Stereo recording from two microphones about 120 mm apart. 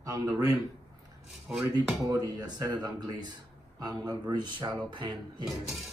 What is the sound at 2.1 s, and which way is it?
Speech, 35° right (ahead or behind).